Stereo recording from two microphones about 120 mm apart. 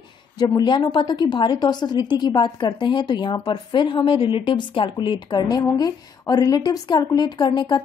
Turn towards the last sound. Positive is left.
turn(degrees=35)  # may be behind; listen again after turning